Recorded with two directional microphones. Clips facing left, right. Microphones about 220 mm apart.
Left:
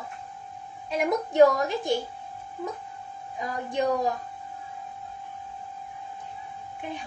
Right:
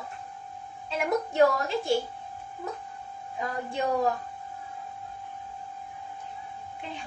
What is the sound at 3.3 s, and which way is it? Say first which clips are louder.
Speech: left 3 dB; 15° left (ahead or behind).